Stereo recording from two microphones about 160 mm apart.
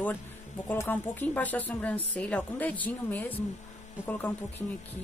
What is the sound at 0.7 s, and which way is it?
Speech, 10° left (ahead or behind).